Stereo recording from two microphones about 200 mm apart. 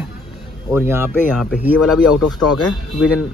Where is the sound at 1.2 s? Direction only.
5° left (ahead or behind).